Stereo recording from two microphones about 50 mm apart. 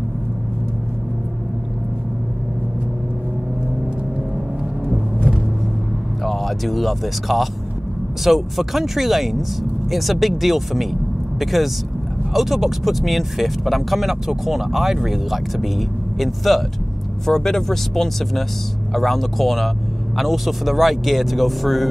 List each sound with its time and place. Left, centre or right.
6.2 s speech: centre